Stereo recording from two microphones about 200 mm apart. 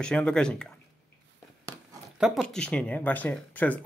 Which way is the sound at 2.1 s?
Centre (ahead or behind).